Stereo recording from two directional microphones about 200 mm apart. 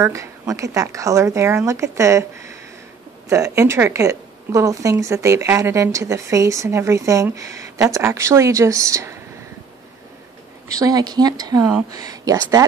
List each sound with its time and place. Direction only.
0.0 s speech: 15° right (ahead or behind)
10.7 s speech: 20° right (ahead or behind)